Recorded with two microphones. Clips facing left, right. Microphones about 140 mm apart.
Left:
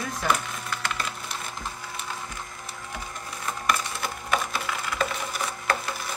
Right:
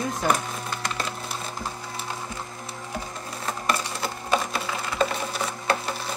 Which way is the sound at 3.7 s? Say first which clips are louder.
Even; 25° right (ahead or behind).